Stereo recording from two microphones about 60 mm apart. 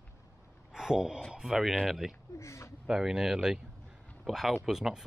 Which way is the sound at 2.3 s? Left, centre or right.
Left.